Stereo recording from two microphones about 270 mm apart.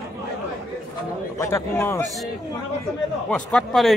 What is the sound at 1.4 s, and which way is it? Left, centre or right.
Speech, centre.